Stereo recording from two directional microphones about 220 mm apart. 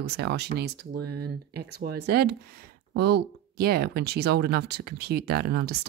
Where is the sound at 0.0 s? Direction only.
50° right (ahead or behind).